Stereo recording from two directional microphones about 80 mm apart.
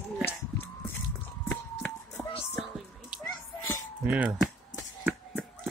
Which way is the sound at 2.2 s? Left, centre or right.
Left.